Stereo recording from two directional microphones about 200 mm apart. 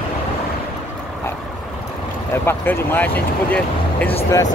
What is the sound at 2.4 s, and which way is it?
Speech, 10° left (ahead or behind).